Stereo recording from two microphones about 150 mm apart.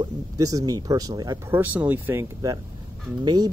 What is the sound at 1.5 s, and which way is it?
Speech, 10° right (ahead or behind).